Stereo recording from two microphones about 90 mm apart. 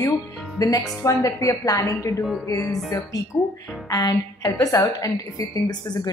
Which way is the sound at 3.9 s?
45° left (ahead or behind).